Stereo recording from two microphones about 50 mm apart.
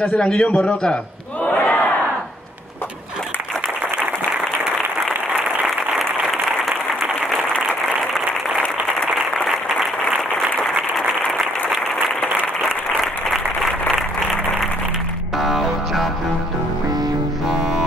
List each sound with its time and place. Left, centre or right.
0.0 s a man's voice: centre
1.4 s battle cry: left
12.6 s applause: centre
15.3 s music: centre